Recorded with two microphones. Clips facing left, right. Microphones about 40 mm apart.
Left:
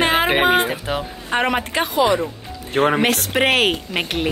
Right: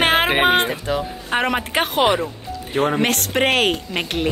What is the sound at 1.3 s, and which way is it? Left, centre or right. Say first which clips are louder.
Speech: left 1 dB; centre.